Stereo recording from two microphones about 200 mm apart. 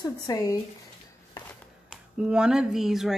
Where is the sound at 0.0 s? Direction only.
15° left (ahead or behind).